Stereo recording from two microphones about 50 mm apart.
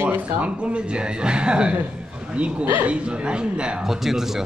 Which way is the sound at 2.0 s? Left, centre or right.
Centre.